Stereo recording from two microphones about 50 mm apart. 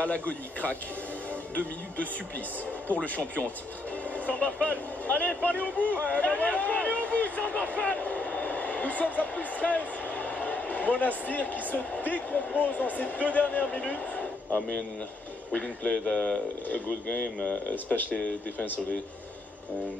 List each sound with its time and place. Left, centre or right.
0.3 s speech: left
17.6 s speech: left